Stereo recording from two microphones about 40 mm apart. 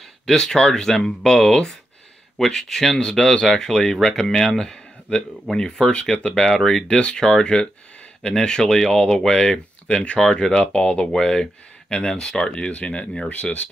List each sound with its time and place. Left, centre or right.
0.3 s speech: centre
9.8 s speech: left
11.1 s speech: centre; by 13.7 s left